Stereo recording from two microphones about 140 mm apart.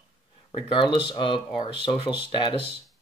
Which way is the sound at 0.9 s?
35° left (ahead or behind).